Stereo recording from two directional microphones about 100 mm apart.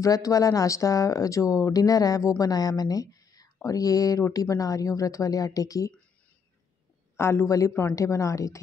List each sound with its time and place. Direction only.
0.0 s speech: 35° left (ahead or behind)
7.2 s speech: 25° left (ahead or behind)